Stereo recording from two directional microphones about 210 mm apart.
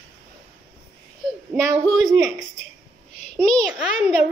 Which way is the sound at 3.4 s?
Centre (ahead or behind).